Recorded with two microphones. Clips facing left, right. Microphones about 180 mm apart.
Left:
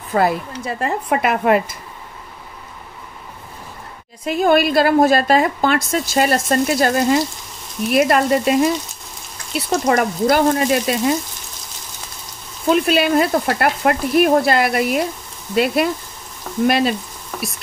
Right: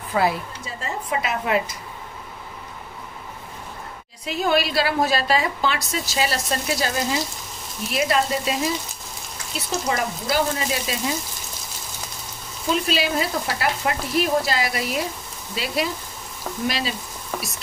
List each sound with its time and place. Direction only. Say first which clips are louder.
0.1 s speech: left 4 dB; 50° left (ahead or behind)
0.5 s frying: left 9 dB; 60° left (ahead or behind)
4.2 s a woman's voice: left 7 dB; 50° left (ahead or behind)
7.9 s frying: left 7 dB; 55° left (ahead or behind)
9.8 s frying: left 10 dB; 55° left (ahead or behind)
12.6 s frying: left 7 dB; 55° left (ahead or behind)
17.3 s frying: left 3 dB; centre (ahead or behind)